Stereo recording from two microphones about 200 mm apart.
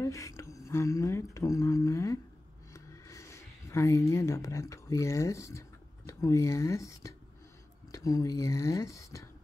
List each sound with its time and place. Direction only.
0.0 s speech: 15° left (ahead or behind)
2.7 s a sound: 15° left (ahead or behind)
4.1 s speech: 15° left (ahead or behind)